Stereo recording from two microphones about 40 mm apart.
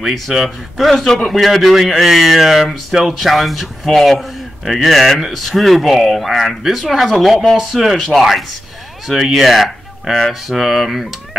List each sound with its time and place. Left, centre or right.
0.1 s a man's voice: centre